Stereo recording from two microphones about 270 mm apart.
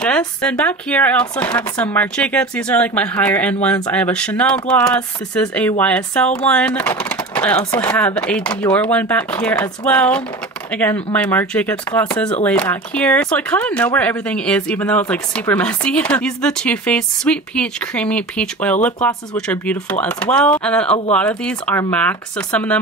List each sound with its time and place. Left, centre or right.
0.0 s speech: centre